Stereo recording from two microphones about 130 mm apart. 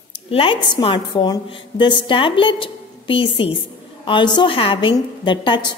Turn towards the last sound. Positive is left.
turn(degrees=40)  # may be behind; listen again after turning